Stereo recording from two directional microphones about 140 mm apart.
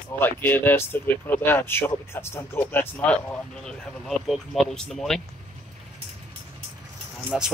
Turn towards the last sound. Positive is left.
turn(degrees=-5)  # may be behind; listen again after turning